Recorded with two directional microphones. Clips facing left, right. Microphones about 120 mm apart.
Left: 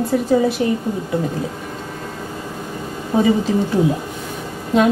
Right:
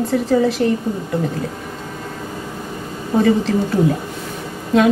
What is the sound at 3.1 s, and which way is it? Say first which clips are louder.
Speech: right 1 dB; 10° left (ahead or behind).